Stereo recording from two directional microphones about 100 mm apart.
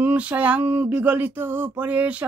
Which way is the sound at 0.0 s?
15° right (ahead or behind).